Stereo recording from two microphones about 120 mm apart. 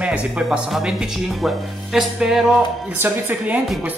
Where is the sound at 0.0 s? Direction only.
5° right (ahead or behind).